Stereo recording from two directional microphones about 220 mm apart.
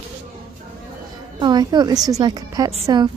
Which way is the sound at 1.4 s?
20° right (ahead or behind).